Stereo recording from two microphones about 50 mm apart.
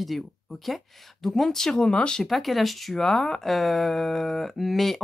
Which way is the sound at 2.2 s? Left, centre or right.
Centre.